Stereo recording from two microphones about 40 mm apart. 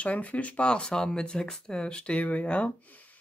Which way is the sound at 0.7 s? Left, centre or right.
Left.